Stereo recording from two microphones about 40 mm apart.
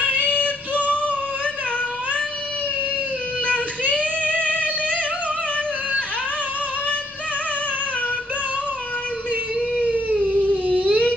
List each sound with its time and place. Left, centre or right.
0.0 s female singing: left
3.4 s singing: left
10.2 s a sound: right